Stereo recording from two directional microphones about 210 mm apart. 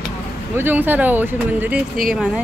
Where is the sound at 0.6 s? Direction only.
10° right (ahead or behind).